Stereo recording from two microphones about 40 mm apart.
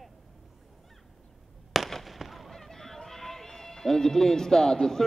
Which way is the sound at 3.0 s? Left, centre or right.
Centre.